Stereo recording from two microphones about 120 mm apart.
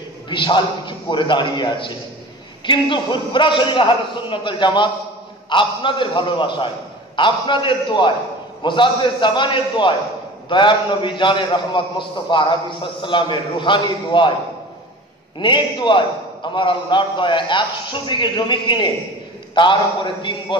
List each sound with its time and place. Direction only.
0.3 s a man's voice: 40° left (ahead or behind)
15.3 s a man's voice: 40° left (ahead or behind)